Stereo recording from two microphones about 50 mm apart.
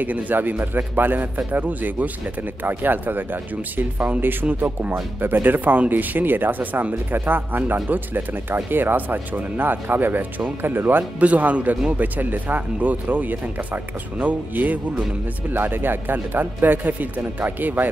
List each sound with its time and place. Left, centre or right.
0.0 s speech: right
11.1 s speech: right